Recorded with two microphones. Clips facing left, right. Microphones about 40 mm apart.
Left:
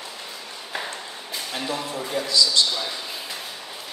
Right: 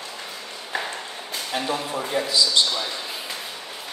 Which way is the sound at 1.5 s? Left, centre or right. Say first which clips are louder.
Right 3 dB; centre.